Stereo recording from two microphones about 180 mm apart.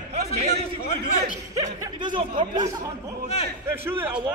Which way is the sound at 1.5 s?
20° right (ahead or behind).